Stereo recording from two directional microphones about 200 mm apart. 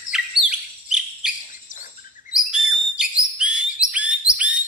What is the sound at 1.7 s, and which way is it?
Bird vocalization, 40° left (ahead or behind).